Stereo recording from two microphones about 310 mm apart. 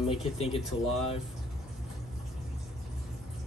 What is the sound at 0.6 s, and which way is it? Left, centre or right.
Speech, centre.